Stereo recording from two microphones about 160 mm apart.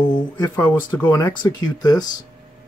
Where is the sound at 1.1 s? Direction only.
20° left (ahead or behind).